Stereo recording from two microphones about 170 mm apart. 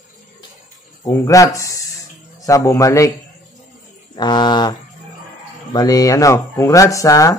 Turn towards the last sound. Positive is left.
turn(degrees=20)  # may be behind; listen again after turning